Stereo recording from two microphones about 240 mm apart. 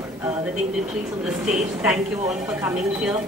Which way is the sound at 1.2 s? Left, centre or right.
Centre.